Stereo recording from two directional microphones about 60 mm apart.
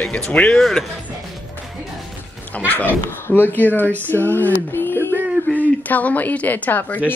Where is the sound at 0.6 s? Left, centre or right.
Centre.